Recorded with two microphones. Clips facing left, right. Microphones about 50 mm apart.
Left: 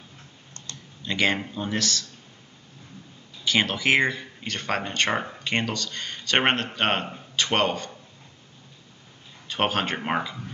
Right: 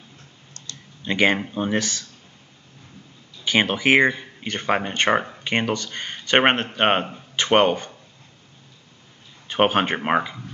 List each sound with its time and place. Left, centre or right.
0.6 s computer keyboard: left
1.0 s speech: right
3.4 s speech: right
9.5 s speech: right